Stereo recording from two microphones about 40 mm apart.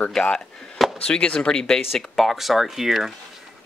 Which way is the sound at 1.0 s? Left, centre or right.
Left.